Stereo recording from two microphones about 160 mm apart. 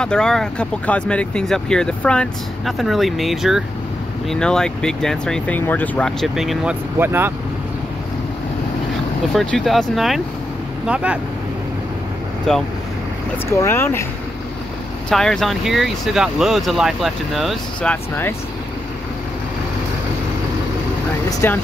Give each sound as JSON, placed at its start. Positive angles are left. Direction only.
{"t": 0.0, "sound": "speech", "side_deg": 5}
{"t": 9.3, "sound": "speech", "side_deg": 0}
{"t": 12.5, "sound": "speech", "side_deg": 5}
{"t": 13.5, "sound": "speech", "side_deg": 15}
{"t": 15.0, "sound": "speech", "side_deg": 5}
{"t": 21.3, "sound": "speech", "side_deg": 15}